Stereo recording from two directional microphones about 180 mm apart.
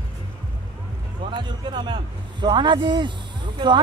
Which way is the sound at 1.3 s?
25° right (ahead or behind).